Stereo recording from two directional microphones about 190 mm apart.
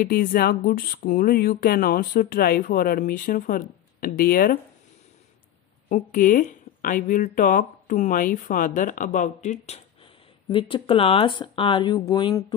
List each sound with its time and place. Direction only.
0.0 s speech: 50° left (ahead or behind)
5.9 s speech: 45° left (ahead or behind)
10.5 s speech: 30° left (ahead or behind)